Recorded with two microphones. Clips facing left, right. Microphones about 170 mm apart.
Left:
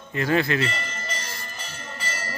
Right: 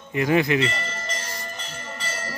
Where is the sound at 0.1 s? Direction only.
15° right (ahead or behind).